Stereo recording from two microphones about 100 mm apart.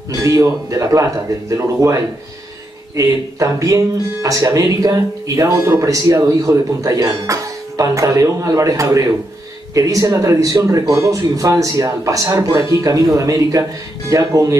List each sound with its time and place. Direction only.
0.2 s speech: 30° right (ahead or behind)